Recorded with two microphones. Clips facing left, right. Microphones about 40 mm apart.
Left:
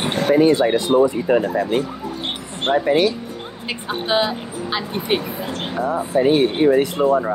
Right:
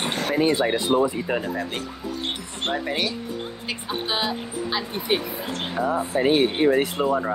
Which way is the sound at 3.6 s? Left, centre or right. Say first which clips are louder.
Left 6 dB; left.